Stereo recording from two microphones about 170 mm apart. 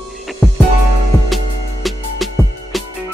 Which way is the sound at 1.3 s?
Centre (ahead or behind).